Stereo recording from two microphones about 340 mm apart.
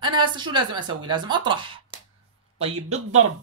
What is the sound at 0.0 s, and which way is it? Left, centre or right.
Speech, centre.